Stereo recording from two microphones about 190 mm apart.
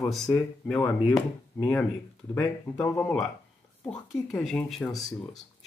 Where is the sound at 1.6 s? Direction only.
15° left (ahead or behind).